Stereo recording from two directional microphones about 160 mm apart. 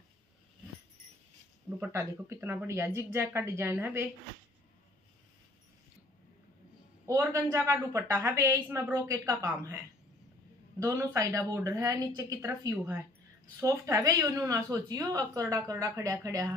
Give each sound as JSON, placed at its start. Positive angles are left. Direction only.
{"t": 1.8, "sound": "a woman's voice", "side_deg": -15}
{"t": 7.1, "sound": "a woman's voice", "side_deg": -20}
{"t": 10.8, "sound": "a woman's voice", "side_deg": -20}